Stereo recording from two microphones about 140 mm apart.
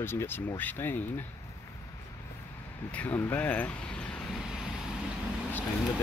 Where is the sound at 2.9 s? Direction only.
10° left (ahead or behind).